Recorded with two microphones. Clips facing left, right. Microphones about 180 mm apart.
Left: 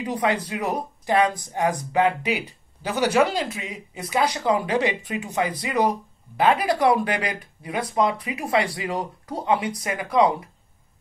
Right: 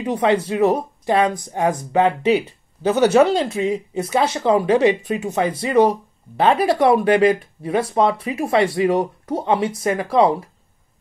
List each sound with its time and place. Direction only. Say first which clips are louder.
0.0 s speech: right 6 dB; 25° right (ahead or behind)